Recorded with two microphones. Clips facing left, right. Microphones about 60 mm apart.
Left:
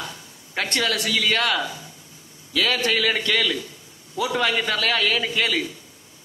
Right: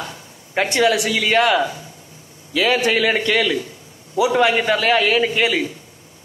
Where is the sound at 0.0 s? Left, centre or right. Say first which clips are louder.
Right 3 dB; centre.